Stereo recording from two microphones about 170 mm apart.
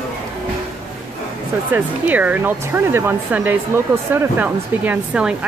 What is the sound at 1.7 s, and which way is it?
Speech, 10° right (ahead or behind).